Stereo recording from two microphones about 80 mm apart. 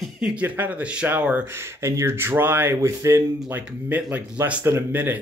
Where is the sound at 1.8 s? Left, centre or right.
Right.